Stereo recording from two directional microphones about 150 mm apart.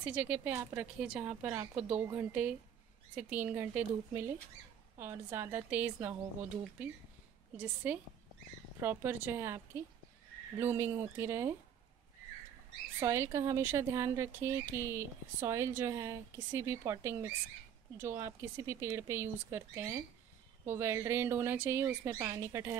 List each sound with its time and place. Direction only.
0.0 s speech: 10° right (ahead or behind)
7.5 s speech: 10° right (ahead or behind)
13.0 s speech: 20° right (ahead or behind)